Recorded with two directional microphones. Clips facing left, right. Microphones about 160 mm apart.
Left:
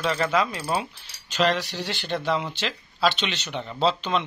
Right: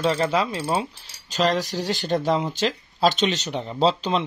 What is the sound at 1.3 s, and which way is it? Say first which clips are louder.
Speech: right 2 dB; 40° right (ahead or behind).